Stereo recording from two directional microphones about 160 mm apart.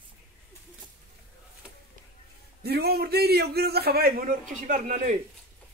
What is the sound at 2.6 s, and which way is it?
A man's voice, 85° right.